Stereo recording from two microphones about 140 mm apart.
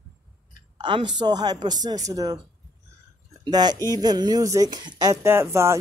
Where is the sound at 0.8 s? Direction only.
35° right (ahead or behind).